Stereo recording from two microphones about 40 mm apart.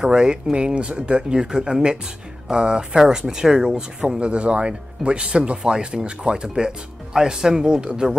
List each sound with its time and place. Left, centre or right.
0.0 s speech: centre